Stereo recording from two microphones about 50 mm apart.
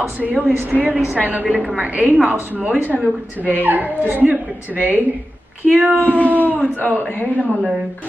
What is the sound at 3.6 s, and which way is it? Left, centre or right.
Speech, right.